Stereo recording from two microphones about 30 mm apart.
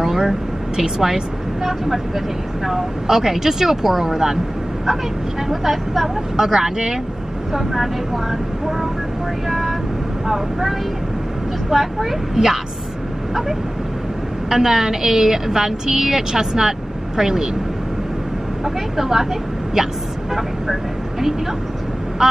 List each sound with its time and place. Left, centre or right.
0.0 s speech: centre
5.5 s speech: centre
6.3 s speech: right
7.5 s speech: centre
11.7 s speech: centre
14.5 s speech: centre
18.9 s speech: centre
22.2 s vehicle: right